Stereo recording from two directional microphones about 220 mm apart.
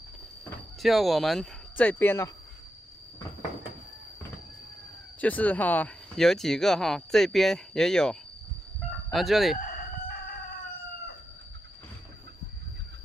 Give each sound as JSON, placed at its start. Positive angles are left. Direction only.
{"t": 0.8, "sound": "speech", "side_deg": 0}
{"t": 5.2, "sound": "speech", "side_deg": 5}
{"t": 9.6, "sound": "crowing", "side_deg": 40}